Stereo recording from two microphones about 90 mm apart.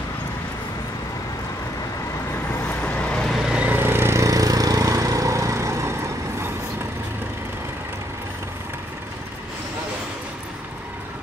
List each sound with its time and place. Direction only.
2.8 s vehicle: 15° left (ahead or behind)
3.3 s vehicle: 10° right (ahead or behind)
3.7 s a sound: 25° right (ahead or behind)
4.3 s vehicle: 40° right (ahead or behind)